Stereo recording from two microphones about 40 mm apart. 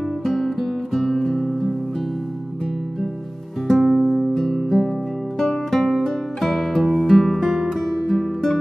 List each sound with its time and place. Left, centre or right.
0.2 s music: centre
1.2 s music: centre
3.7 s music: centre